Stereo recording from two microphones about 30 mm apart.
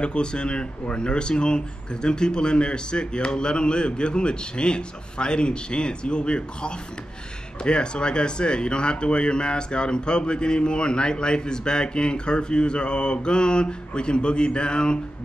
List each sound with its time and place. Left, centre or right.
0.0 s speech: left